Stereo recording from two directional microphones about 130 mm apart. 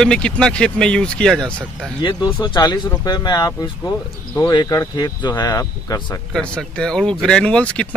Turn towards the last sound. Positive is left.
turn(degrees=10)  # may be behind; listen again after turning